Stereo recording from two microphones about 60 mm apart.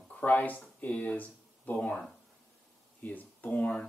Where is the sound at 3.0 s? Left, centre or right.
Left.